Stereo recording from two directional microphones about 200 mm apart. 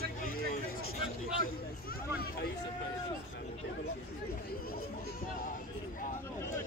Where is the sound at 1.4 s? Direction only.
45° left (ahead or behind).